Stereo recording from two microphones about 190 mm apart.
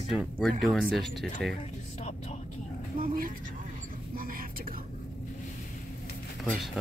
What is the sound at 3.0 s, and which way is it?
Vehicle, 50° right (ahead or behind).